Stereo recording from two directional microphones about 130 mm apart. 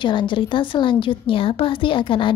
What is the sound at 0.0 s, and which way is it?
A woman's voice, 35° left (ahead or behind).